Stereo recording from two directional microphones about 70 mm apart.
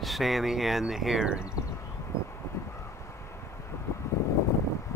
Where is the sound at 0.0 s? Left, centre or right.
Centre.